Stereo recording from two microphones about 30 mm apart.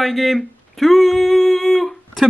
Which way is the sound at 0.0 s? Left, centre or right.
Centre.